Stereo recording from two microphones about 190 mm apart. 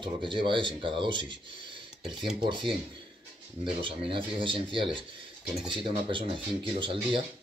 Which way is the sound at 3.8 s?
25° right (ahead or behind).